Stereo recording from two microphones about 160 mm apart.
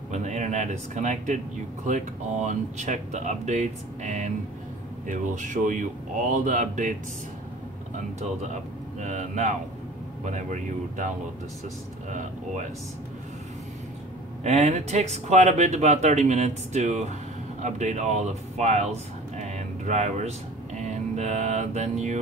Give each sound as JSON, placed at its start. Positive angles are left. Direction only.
{"t": 0.1, "sound": "speech", "side_deg": -50}
{"t": 9.0, "sound": "speech", "side_deg": -45}
{"t": 14.4, "sound": "speech", "side_deg": -45}
{"t": 19.3, "sound": "a sound", "side_deg": -45}